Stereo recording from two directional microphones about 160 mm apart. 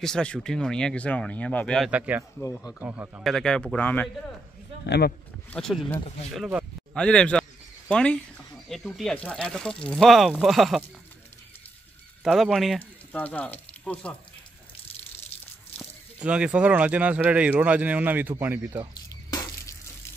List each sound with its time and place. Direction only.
0.0 s speech: 5° left (ahead or behind)
1.9 s speech: 10° right (ahead or behind)
3.3 s speech: 5° left (ahead or behind)
4.8 s speech: 90° left
5.5 s speech: centre (ahead or behind)
12.2 s speech: centre (ahead or behind)
15.8 s speech: 5° right (ahead or behind)
18.9 s squish: 20° left (ahead or behind)